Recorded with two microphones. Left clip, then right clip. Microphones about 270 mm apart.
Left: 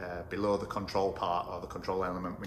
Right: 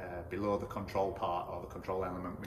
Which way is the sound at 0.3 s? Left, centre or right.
Centre.